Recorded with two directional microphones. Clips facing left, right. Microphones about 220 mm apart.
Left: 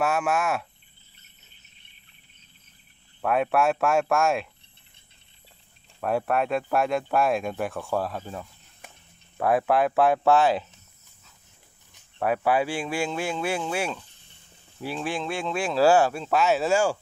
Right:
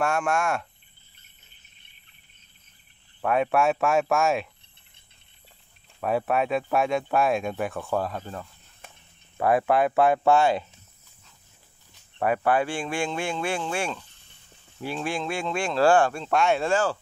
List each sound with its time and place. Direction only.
0.0 s speech: 5° left (ahead or behind)
3.2 s speech: centre (ahead or behind)
5.9 s speech: centre (ahead or behind)
12.2 s speech: 5° left (ahead or behind)